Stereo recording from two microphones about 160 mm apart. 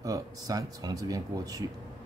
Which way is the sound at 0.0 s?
20° right (ahead or behind).